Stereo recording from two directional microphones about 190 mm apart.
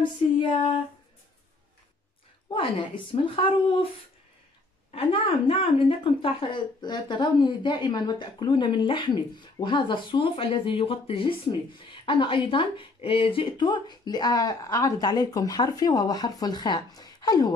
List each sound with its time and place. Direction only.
2.5 s a woman's voice: 25° left (ahead or behind)
4.9 s a woman's voice: 30° left (ahead or behind)